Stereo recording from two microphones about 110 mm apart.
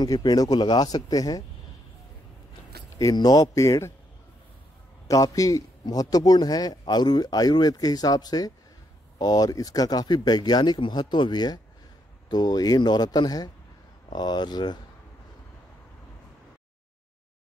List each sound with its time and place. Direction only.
0.0 s a man's voice: 40° left (ahead or behind)
3.0 s a man's voice: 35° left (ahead or behind)
5.0 s a man's voice: 30° left (ahead or behind)